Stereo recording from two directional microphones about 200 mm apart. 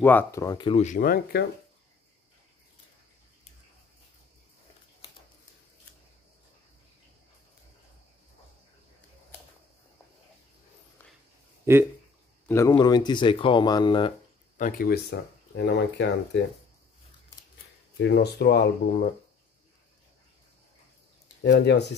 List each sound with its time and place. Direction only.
0.0 s speech: 10° left (ahead or behind)
0.7 s speech: 40° left (ahead or behind)
12.4 s speech: 15° left (ahead or behind)
14.6 s speech: 50° left (ahead or behind)
17.9 s speech: 60° left (ahead or behind)
21.4 s speech: 60° left (ahead or behind)